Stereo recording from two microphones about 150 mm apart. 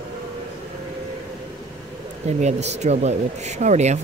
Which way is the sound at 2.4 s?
50° right (ahead or behind).